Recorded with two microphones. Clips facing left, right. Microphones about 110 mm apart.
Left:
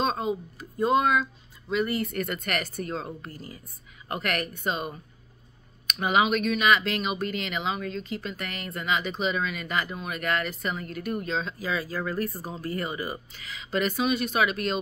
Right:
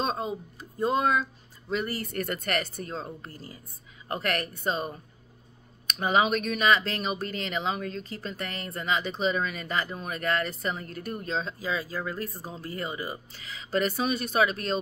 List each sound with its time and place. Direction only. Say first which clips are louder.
0.6 s speech: left 2 dB; 30° right (ahead or behind)